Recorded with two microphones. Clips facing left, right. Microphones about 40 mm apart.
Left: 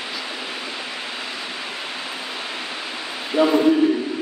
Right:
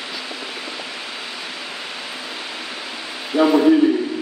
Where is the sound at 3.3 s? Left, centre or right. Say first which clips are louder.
Right 2 dB; left.